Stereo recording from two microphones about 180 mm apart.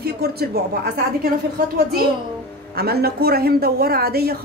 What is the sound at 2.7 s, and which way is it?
A woman's voice, 60° right (ahead or behind).